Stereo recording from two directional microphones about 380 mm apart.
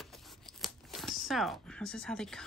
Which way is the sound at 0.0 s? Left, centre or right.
Centre.